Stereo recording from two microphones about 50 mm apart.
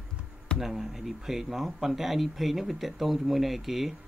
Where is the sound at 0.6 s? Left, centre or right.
Centre.